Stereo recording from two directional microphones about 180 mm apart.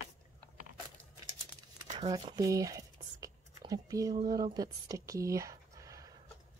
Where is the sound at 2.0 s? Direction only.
20° right (ahead or behind).